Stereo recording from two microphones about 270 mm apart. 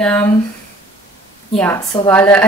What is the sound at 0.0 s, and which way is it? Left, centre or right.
Speech, centre.